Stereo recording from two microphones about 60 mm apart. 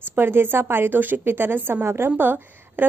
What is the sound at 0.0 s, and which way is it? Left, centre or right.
A woman's voice, right.